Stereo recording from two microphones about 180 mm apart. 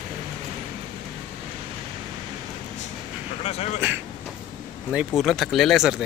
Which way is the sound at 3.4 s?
35° left (ahead or behind).